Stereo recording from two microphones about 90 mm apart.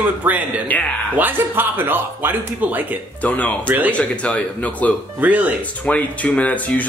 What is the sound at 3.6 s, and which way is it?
Speech, 20° right (ahead or behind).